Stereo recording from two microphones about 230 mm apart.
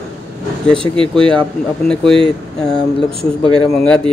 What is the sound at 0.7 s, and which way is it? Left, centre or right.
Speech, right.